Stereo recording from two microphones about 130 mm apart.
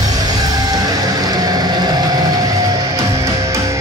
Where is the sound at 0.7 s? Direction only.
30° right (ahead or behind).